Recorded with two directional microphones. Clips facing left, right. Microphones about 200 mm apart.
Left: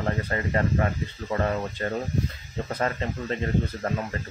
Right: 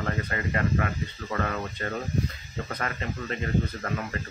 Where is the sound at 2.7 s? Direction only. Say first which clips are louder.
Left 5 dB; 30° left (ahead or behind).